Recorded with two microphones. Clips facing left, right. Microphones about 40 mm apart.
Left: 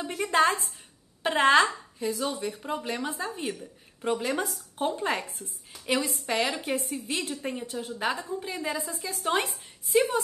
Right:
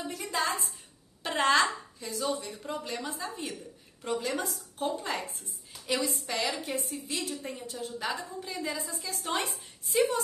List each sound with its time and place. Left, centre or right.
0.0 s a woman's voice: left
1.3 s a woman's voice: left
4.4 s a woman's voice: left; by 9.2 s centre
9.2 s a woman's voice: left